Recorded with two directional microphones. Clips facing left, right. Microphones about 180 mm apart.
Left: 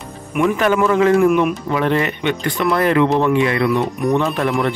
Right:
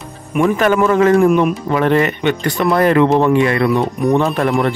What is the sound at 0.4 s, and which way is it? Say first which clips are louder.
Speech: right 2 dB; 50° right (ahead or behind).